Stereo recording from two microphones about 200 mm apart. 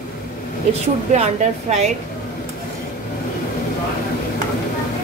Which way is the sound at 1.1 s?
35° right (ahead or behind).